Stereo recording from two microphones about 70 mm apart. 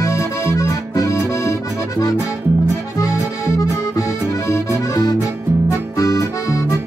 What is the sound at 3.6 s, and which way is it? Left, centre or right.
Accordion, left.